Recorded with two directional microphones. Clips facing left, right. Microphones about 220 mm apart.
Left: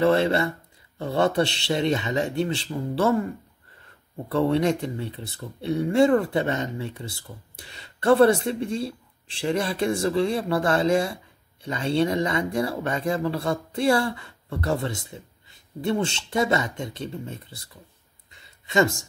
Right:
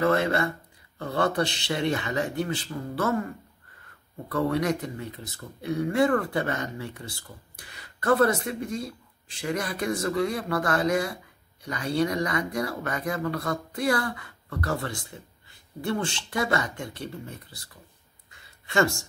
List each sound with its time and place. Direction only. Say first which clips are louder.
0.0 s speech: left 3 dB; 25° left (ahead or behind)
4.3 s speech: left 4 dB; 25° left (ahead or behind)
18.3 s a sound: left 3 dB; 20° left (ahead or behind)